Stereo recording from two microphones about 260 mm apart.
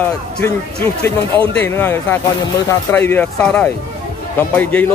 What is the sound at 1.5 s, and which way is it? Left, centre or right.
A man's voice, centre.